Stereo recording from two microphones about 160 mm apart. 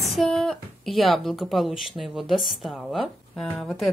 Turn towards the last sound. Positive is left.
turn(degrees=0)  # may be behind; listen again after turning